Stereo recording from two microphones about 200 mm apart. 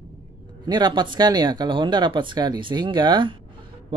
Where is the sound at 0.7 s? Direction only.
20° right (ahead or behind).